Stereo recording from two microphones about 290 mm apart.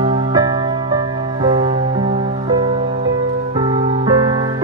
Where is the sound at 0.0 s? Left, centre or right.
Centre.